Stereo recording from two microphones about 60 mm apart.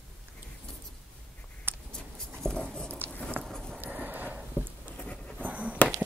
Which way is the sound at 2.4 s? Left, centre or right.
Centre.